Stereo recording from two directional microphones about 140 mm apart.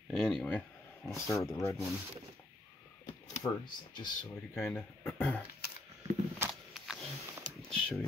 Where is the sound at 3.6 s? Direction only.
30° left (ahead or behind).